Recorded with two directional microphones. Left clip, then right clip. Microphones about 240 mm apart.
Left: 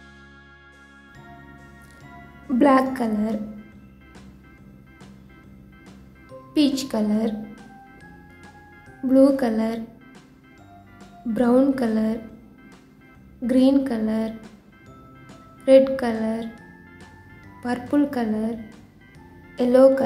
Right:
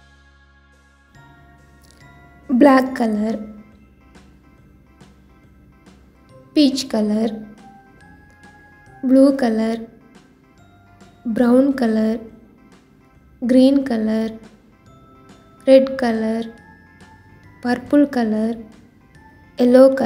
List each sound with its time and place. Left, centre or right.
2.5 s a woman's voice: centre
6.5 s a woman's voice: centre
7.5 s music: centre
9.0 s a woman's voice: centre
11.3 s a woman's voice: centre
13.5 s a woman's voice: centre
15.6 s a woman's voice: centre
17.6 s a woman's voice: centre